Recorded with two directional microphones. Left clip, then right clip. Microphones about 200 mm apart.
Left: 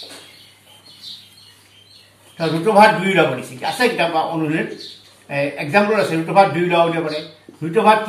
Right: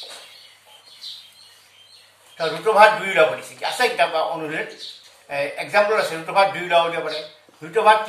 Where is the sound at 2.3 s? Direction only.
20° right (ahead or behind).